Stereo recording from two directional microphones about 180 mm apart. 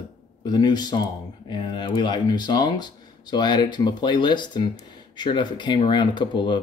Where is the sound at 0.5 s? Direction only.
25° left (ahead or behind).